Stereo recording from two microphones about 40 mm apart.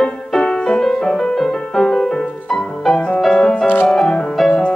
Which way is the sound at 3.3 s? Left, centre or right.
Centre.